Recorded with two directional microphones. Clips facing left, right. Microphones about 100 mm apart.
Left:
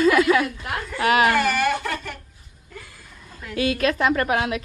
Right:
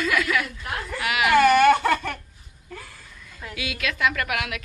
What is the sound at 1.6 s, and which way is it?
Baby laughter, 60° right (ahead or behind).